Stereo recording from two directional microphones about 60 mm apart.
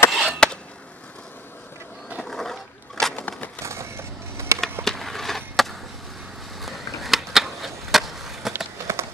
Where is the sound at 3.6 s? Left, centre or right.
Right.